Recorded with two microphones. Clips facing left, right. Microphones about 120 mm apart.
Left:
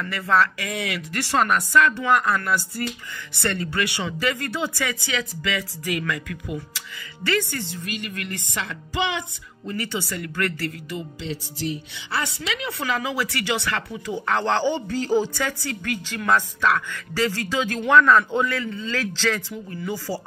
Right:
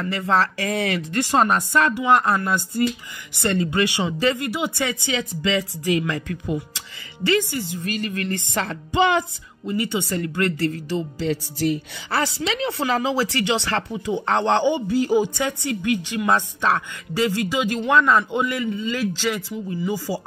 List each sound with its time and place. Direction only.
0.0 s music: 25° right (ahead or behind)
1.1 s a man's voice: 20° right (ahead or behind)
7.8 s music: 35° right (ahead or behind)
9.7 s a man's voice: 15° right (ahead or behind); by 11.2 s 30° right (ahead or behind)
11.2 s speech: 50° right (ahead or behind)
12.2 s speech: 35° right (ahead or behind)
17.2 s a man's voice: 15° right (ahead or behind)